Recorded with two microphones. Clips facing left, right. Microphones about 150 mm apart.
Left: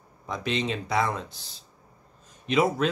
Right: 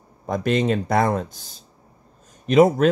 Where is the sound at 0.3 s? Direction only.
50° right (ahead or behind).